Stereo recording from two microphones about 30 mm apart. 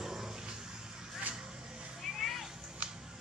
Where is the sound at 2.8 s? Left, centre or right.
Right.